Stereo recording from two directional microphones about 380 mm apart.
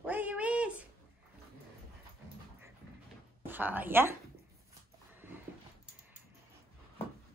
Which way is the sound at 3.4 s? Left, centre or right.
Centre.